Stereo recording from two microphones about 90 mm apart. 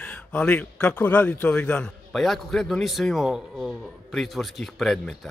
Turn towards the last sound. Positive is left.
turn(degrees=5)  # may be behind; listen again after turning